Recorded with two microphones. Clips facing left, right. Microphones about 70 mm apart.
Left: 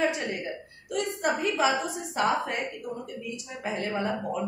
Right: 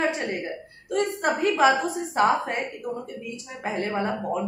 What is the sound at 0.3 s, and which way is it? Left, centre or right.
A woman's voice, right.